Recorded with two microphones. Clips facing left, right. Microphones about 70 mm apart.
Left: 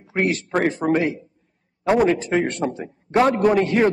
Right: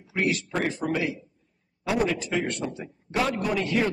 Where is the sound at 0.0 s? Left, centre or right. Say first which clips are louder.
Left 4 dB; left.